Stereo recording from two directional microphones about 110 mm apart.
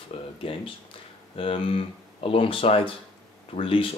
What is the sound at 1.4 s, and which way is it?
Speech, 55° left (ahead or behind).